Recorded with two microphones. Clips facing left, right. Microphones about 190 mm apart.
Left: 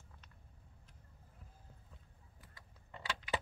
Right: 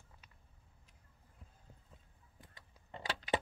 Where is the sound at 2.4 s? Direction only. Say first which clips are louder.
Right 1 dB; 25° right (ahead or behind).